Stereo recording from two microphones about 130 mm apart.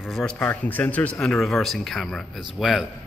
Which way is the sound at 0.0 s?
5° left (ahead or behind).